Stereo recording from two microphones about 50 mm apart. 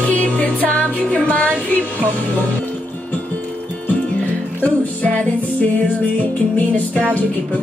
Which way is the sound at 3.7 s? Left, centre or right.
Left.